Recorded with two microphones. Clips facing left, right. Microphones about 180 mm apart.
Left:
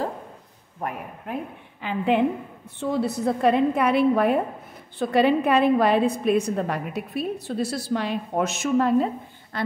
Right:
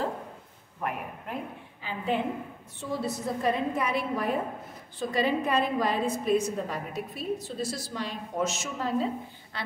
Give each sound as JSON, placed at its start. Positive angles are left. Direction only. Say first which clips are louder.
{"t": 1.8, "sound": "a woman's voice", "louder": "left 8 dB", "side_deg": 65}